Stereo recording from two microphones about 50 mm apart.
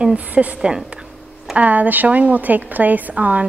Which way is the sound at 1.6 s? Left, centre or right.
Right.